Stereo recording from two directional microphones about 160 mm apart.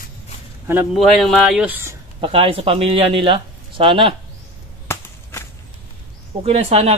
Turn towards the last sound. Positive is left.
turn(degrees=-40)  # may be behind; listen again after turning